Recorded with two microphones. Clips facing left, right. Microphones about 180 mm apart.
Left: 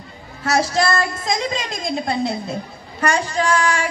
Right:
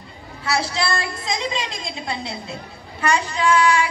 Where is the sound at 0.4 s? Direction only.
45° left (ahead or behind).